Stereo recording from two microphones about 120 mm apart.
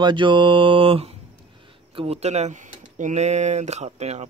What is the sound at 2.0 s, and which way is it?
Speech, 60° right (ahead or behind).